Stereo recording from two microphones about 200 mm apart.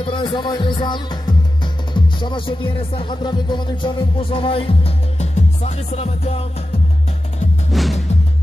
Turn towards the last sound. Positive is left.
turn(degrees=0)  # may be behind; listen again after turning